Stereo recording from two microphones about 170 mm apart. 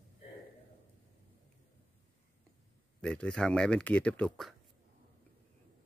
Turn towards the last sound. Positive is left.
turn(degrees=0)  # may be behind; listen again after turning